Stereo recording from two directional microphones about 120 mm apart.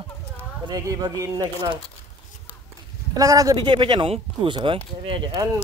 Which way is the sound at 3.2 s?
30° right (ahead or behind).